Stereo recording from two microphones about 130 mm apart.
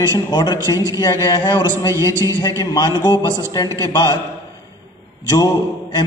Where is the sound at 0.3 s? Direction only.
35° left (ahead or behind).